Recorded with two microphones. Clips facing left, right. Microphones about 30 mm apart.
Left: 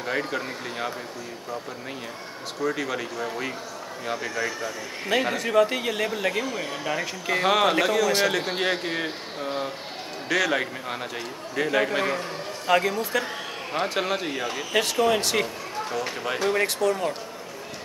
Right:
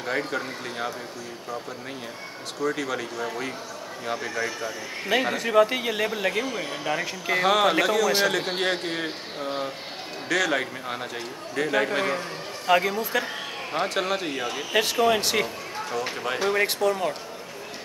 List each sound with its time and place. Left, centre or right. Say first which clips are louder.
0.0 s a man's voice: even; centre
2.6 s a man's voice: even; centre